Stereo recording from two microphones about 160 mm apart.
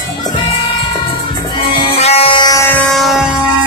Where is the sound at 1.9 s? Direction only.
40° left (ahead or behind).